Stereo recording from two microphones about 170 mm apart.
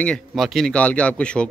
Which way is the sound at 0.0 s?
Centre (ahead or behind).